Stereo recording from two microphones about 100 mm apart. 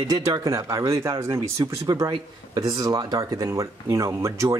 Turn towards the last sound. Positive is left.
turn(degrees=-30)  # may be behind; listen again after turning